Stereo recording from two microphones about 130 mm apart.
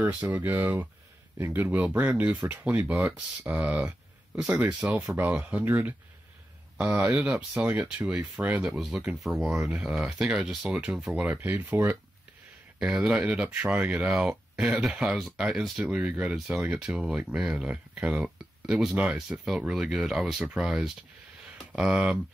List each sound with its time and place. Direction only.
0.1 s speech: 10° right (ahead or behind)
8.6 s speech: 5° right (ahead or behind)